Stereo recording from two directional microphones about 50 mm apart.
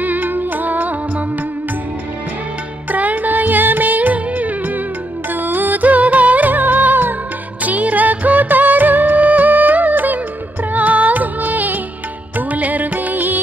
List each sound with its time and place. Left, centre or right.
0.0 s music: right
2.9 s music: right